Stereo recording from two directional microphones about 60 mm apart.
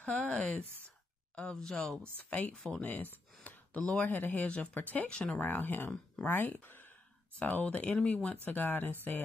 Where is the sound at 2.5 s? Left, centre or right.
Centre.